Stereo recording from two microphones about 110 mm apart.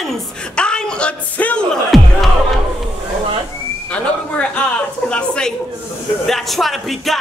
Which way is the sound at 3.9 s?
10° left (ahead or behind).